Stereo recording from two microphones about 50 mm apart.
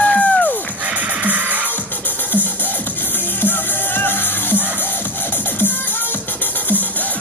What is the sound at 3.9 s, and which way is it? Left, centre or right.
Music, left.